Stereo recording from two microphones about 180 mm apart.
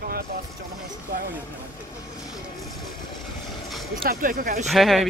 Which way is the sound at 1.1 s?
65° right (ahead or behind).